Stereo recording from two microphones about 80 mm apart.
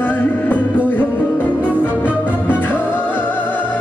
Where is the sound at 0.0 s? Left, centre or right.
Left.